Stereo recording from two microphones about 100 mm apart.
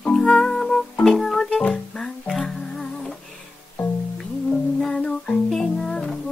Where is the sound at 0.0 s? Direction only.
5° left (ahead or behind).